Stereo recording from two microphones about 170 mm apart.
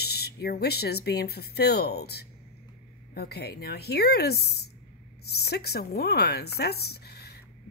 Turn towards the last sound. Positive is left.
turn(degrees=70)  # may be behind; listen again after turning